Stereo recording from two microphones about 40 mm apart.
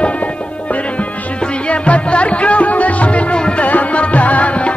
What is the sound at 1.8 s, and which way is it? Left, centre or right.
Music, left.